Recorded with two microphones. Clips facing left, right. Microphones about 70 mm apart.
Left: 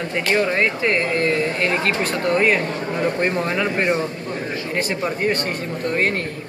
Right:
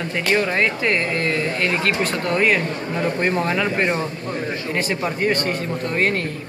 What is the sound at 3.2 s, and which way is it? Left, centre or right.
Speech, centre.